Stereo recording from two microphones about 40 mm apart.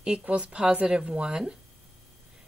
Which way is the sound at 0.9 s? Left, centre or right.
Right.